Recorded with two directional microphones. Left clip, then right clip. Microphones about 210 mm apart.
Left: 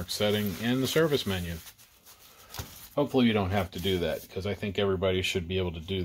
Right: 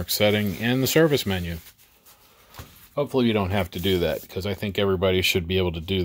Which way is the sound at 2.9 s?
30° right (ahead or behind).